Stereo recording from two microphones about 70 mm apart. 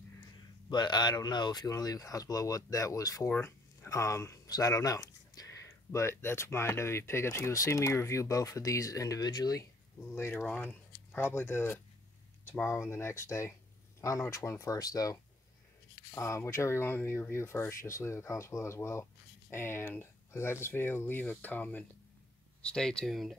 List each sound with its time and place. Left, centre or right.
0.7 s speech: left
3.4 s a sound: left
4.5 s speech: left
9.2 s speech: left
9.9 s speech: left
16.2 s speech: left
22.6 s speech: centre
23.0 s speech: centre